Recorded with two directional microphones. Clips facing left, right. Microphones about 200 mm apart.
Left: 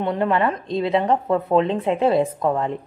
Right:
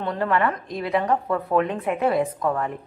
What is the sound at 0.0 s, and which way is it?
A woman's voice, 20° left (ahead or behind).